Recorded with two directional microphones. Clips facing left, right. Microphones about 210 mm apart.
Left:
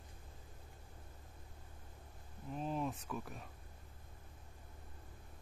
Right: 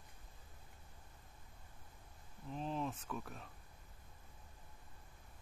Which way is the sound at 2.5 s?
5° left (ahead or behind).